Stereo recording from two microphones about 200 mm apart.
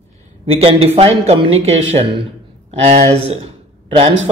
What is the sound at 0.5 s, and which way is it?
A man's voice, 30° right (ahead or behind).